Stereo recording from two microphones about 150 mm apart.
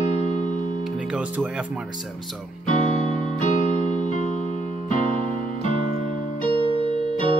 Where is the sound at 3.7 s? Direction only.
40° right (ahead or behind).